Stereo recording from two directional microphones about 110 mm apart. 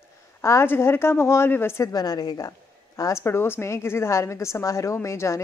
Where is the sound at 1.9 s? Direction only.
35° left (ahead or behind).